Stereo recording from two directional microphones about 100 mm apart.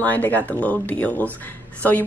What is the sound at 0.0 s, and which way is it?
Speech, 15° left (ahead or behind).